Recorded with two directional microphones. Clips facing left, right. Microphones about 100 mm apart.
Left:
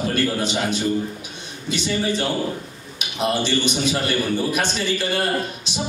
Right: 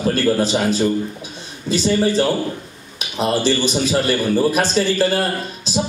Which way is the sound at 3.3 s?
35° right (ahead or behind).